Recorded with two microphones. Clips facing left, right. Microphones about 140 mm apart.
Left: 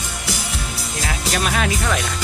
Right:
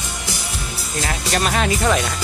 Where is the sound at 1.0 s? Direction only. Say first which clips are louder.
Right 1 dB; centre (ahead or behind).